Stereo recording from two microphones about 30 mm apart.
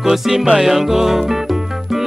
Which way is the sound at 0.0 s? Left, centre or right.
Centre.